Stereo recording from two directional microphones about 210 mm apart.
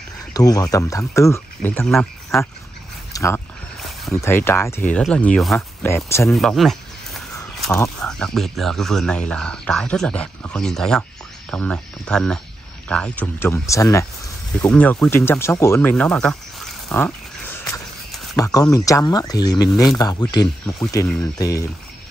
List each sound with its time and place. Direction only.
0.3 s speech: 15° left (ahead or behind)
6.3 s a sound: centre (ahead or behind)
8.0 s speech: 5° left (ahead or behind)